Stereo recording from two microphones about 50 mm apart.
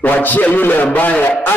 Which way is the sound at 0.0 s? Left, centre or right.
Left.